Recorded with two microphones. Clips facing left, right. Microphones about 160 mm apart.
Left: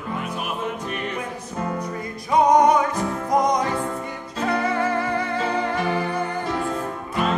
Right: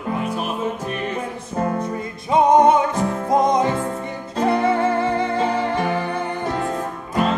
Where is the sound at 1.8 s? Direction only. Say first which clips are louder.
Right 3 dB; 25° right (ahead or behind).